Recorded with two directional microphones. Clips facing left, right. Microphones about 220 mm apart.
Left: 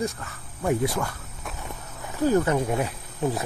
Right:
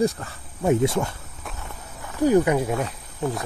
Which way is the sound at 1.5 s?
Centre (ahead or behind).